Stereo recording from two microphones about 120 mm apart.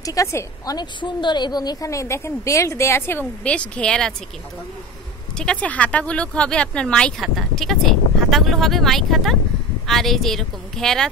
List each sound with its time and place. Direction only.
0.0 s a woman's voice: 25° left (ahead or behind)
0.7 s a woman's voice: 40° left (ahead or behind); by 4.1 s 5° left (ahead or behind)
5.4 s speech: 10° left (ahead or behind)